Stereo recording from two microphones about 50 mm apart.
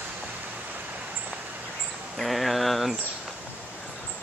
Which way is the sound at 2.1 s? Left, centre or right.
Centre.